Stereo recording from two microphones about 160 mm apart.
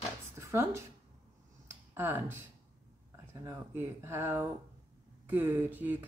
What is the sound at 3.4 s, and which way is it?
Speech, 15° right (ahead or behind).